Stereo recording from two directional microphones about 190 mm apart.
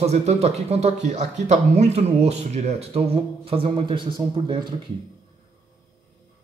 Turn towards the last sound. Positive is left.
turn(degrees=-25)  # may be behind; listen again after turning